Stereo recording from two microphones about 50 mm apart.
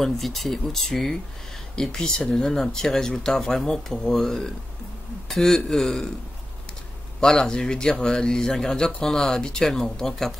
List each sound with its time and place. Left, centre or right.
0.0 s speech: centre
7.2 s speech: centre